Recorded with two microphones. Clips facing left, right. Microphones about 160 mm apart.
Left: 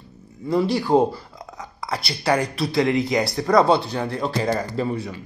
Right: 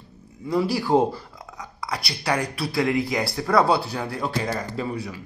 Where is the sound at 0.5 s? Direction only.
5° right (ahead or behind).